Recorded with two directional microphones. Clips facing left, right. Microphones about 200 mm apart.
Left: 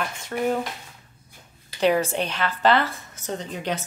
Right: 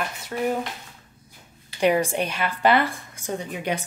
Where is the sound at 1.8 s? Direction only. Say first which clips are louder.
Even; 10° right (ahead or behind).